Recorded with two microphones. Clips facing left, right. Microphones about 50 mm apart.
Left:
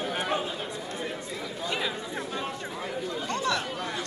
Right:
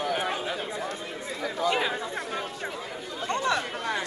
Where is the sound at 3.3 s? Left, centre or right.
Right.